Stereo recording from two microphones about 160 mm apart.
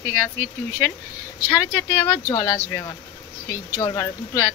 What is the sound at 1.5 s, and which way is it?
Speech, 15° left (ahead or behind).